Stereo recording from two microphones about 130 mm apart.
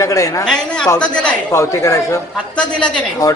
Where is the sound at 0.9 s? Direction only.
10° left (ahead or behind).